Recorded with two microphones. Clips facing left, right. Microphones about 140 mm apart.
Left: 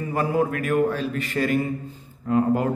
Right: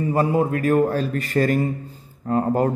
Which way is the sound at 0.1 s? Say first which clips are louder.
Right 2 dB; 30° right (ahead or behind).